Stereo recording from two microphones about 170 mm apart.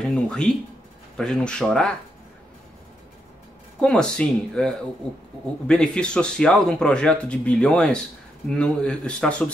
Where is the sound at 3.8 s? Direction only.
5° left (ahead or behind).